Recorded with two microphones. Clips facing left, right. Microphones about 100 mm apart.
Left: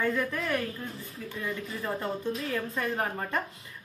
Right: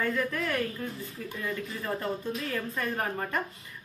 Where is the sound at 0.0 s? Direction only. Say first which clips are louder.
Even; 15° left (ahead or behind).